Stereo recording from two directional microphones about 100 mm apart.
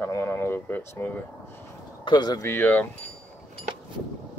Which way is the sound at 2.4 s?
20° left (ahead or behind).